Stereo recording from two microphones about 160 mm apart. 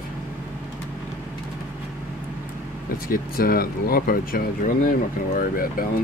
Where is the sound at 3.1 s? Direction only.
65° left (ahead or behind).